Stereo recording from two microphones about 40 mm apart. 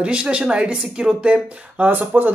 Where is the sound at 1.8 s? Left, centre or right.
Right.